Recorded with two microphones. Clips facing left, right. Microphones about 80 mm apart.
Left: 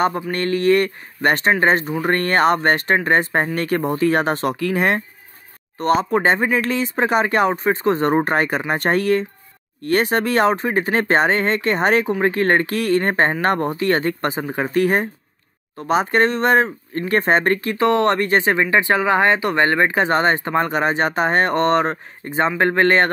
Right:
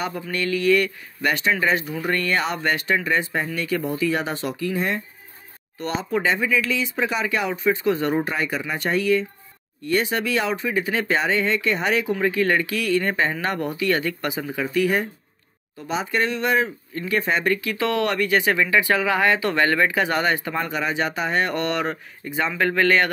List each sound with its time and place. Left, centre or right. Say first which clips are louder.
0.0 s speech: left 7 dB; left
4.6 s speech: left 5 dB; left
5.8 s speech: left 7 dB; left
17.7 s speech: left 6 dB; left
18.1 s speech: left 3 dB; left